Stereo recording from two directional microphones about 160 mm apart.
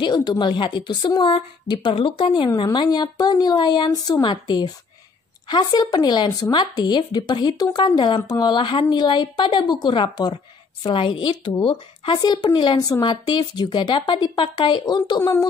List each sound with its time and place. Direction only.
0.0 s speech: 25° left (ahead or behind)